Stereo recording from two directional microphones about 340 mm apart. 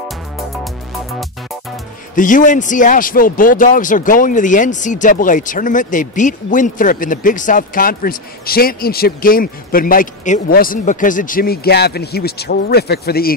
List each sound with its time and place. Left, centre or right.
2.1 s a man's voice: left